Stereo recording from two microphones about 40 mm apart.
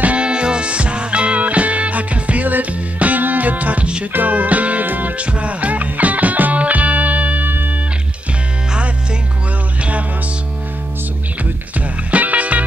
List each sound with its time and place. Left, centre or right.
0.0 s music: right
12.1 s music: right